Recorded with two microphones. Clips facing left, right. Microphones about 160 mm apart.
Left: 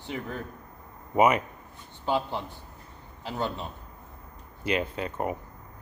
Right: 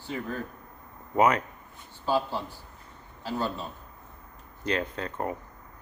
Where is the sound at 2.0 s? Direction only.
20° left (ahead or behind).